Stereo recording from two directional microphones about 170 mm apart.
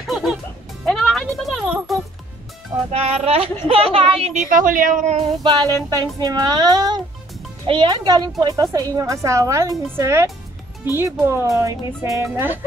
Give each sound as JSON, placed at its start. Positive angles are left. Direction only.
{"t": 0.0, "sound": "music", "side_deg": 0}
{"t": 2.9, "sound": "a woman's voice", "side_deg": -35}
{"t": 5.4, "sound": "a woman's voice", "side_deg": -25}